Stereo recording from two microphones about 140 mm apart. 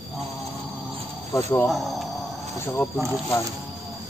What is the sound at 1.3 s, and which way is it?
Speech, 20° left (ahead or behind).